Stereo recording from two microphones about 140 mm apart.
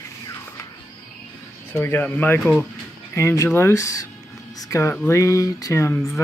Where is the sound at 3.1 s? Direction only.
20° left (ahead or behind).